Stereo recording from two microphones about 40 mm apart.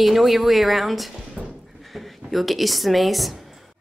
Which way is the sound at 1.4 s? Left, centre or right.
Centre.